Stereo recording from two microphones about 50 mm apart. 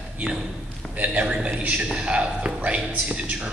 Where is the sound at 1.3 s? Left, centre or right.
Right.